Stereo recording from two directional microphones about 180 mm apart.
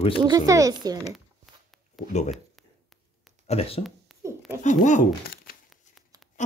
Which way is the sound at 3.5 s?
35° left (ahead or behind).